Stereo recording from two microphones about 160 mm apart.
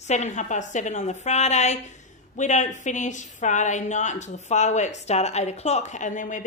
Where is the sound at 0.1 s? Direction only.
50° left (ahead or behind).